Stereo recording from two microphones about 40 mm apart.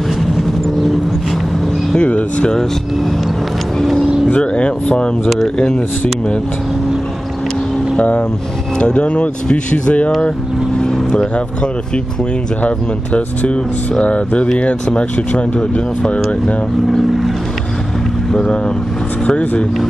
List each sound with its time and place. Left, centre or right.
2.0 s speech: left
4.3 s speech: left
8.0 s speech: left
11.0 s vehicle: centre
12.6 s speech: left
19.2 s speech: left